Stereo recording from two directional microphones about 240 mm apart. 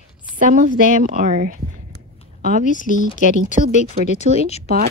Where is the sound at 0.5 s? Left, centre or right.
Right.